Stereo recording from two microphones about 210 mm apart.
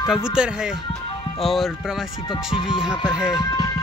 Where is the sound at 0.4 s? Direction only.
5° right (ahead or behind).